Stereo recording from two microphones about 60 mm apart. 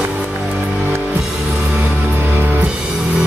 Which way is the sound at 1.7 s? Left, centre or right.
Right.